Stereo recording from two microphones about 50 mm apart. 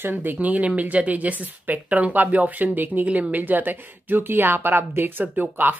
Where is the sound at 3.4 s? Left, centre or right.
Right.